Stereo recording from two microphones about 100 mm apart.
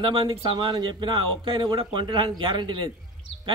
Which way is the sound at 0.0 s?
55° right (ahead or behind).